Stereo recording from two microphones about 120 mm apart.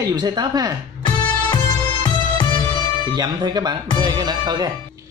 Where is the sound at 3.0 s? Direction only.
35° right (ahead or behind).